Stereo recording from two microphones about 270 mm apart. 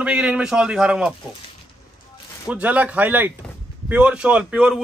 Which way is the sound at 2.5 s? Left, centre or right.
Centre.